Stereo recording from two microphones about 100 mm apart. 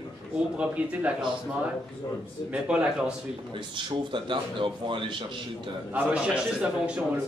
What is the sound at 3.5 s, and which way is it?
Speech, 55° right (ahead or behind).